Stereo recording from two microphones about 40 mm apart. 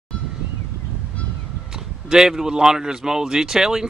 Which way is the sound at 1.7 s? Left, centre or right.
Centre.